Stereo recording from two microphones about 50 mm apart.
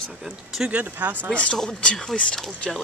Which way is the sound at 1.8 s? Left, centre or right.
Centre.